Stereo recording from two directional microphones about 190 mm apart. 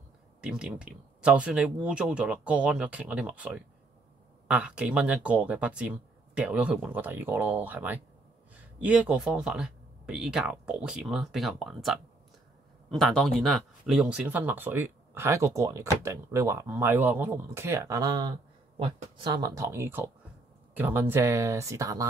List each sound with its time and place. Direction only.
0.4 s speech: 5° right (ahead or behind)